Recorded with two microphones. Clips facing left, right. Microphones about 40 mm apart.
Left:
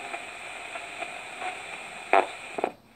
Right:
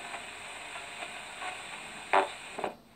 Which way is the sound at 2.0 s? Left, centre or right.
Left.